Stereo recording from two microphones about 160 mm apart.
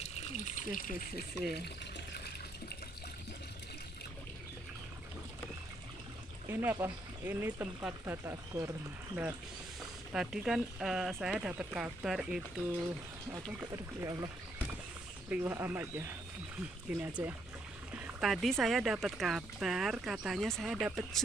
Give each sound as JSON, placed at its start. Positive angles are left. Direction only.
{"t": 0.0, "sound": "water", "side_deg": 45}
{"t": 6.4, "sound": "speech", "side_deg": -15}
{"t": 10.1, "sound": "speech", "side_deg": -5}
{"t": 14.0, "sound": "speech", "side_deg": -20}
{"t": 15.2, "sound": "speech", "side_deg": -10}